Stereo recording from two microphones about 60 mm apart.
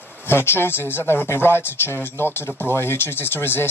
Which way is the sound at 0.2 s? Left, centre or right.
Left.